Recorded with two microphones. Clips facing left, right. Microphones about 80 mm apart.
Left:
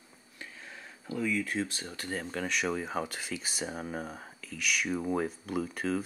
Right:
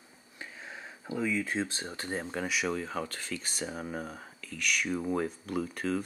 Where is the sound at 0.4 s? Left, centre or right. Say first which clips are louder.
Right 3 dB; centre.